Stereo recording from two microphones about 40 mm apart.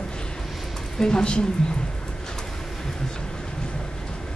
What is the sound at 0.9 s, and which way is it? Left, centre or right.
Speech, left.